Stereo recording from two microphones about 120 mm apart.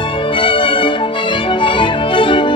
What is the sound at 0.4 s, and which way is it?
Music, 45° left (ahead or behind).